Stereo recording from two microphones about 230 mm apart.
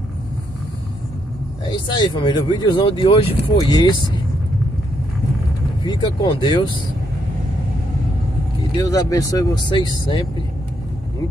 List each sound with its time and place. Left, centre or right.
1.7 s speech: left
5.9 s speech: left
8.8 s speech: centre